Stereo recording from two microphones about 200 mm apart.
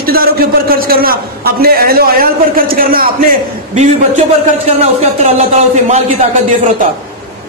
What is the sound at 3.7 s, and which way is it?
Speech, 35° right (ahead or behind).